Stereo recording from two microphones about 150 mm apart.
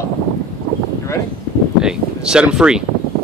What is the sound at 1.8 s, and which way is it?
Speech, 5° right (ahead or behind).